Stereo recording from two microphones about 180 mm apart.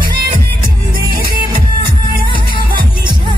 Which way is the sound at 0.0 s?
50° right (ahead or behind).